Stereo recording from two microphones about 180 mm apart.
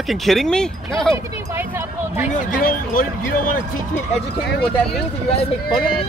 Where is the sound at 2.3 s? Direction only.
50° left (ahead or behind).